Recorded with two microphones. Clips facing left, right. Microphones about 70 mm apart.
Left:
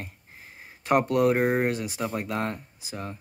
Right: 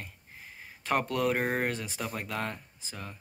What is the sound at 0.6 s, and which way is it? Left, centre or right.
Speech, centre.